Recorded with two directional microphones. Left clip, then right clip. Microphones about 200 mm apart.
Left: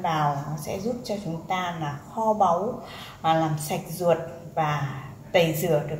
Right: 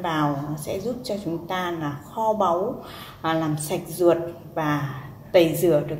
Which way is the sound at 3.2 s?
40° right (ahead or behind).